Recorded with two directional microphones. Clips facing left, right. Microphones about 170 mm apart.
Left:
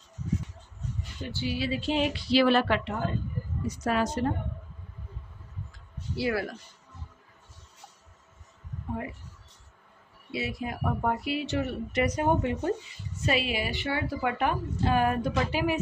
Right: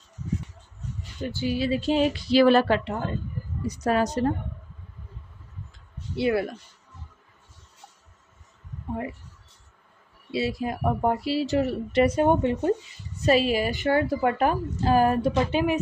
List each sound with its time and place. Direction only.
1.3 s a woman's voice: 45° right (ahead or behind)
5.7 s a sound: 25° right (ahead or behind)
10.3 s a woman's voice: 30° right (ahead or behind)
13.2 s a woman's voice: 40° right (ahead or behind); by 15.8 s 20° right (ahead or behind)